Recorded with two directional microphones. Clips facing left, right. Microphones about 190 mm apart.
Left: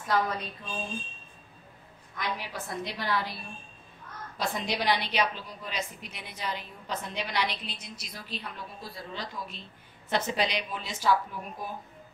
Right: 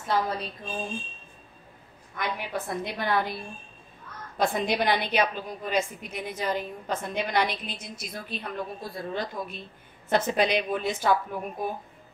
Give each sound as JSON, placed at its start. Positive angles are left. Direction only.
{"t": 0.0, "sound": "a woman's voice", "side_deg": -25}
{"t": 2.1, "sound": "a woman's voice", "side_deg": -55}
{"t": 4.4, "sound": "a woman's voice", "side_deg": -55}